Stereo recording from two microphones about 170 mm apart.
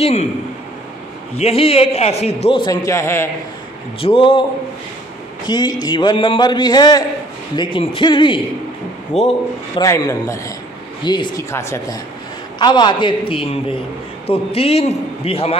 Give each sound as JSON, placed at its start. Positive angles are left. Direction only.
{"t": 0.0, "sound": "a man's voice", "side_deg": 40}
{"t": 1.3, "sound": "a man's voice", "side_deg": 35}
{"t": 2.6, "sound": "a man's voice", "side_deg": 20}
{"t": 4.0, "sound": "a man's voice", "side_deg": 30}
{"t": 5.5, "sound": "a man's voice", "side_deg": 25}
{"t": 9.1, "sound": "a man's voice", "side_deg": 40}
{"t": 9.8, "sound": "a man's voice", "side_deg": 20}